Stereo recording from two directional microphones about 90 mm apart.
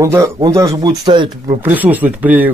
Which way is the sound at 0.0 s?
35° right (ahead or behind).